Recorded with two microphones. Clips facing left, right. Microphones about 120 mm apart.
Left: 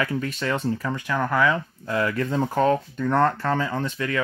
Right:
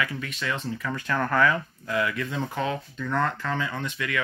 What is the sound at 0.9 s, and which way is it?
Speech, 15° left (ahead or behind).